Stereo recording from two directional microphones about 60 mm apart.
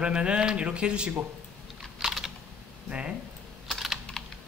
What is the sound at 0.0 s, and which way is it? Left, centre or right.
Speech, centre.